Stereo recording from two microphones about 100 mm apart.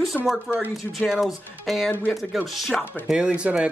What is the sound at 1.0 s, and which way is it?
Speech, centre (ahead or behind).